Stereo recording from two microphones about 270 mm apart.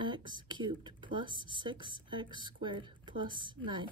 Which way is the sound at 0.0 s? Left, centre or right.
Centre.